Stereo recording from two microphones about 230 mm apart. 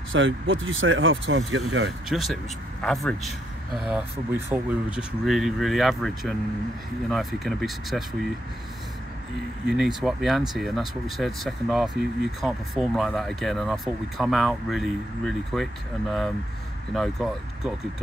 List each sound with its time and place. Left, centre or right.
0.1 s speech: right
2.0 s speech: centre
9.7 s speech: centre